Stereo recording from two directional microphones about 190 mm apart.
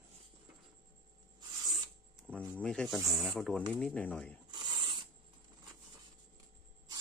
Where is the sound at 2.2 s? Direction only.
5° left (ahead or behind).